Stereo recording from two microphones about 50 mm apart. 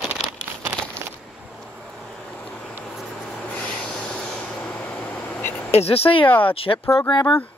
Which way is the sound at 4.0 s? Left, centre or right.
Centre.